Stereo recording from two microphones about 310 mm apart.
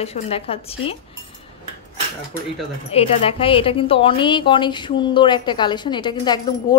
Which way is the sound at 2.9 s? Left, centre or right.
Centre.